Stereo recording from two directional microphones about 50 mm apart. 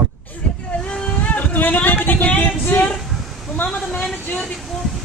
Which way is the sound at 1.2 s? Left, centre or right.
Left.